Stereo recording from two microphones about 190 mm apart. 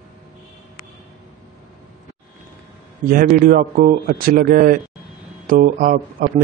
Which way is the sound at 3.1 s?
45° right (ahead or behind).